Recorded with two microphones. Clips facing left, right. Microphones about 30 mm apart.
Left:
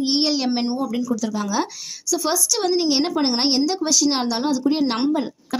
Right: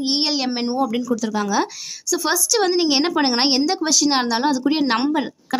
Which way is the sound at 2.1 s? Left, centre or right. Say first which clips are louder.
Right 2 dB; right.